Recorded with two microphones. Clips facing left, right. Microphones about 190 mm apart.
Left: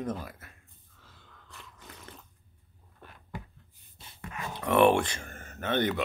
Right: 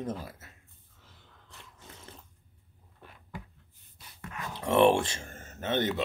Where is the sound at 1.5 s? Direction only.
25° right (ahead or behind).